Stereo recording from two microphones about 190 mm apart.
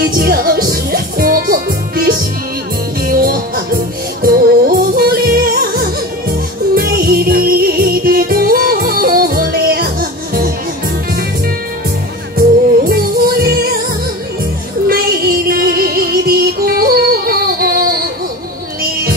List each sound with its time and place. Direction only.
0.2 s music: 50° right (ahead or behind)
12.4 s music: 50° right (ahead or behind)
14.9 s music: 50° right (ahead or behind)